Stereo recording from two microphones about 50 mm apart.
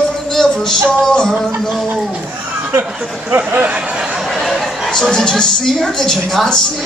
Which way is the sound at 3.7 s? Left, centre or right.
Right.